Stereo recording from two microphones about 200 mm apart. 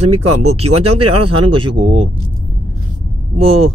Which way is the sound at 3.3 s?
30° right (ahead or behind).